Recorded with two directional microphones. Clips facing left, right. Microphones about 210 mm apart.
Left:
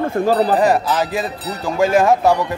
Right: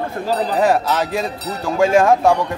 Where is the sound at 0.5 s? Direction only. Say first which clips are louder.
Left 1 dB; centre (ahead or behind).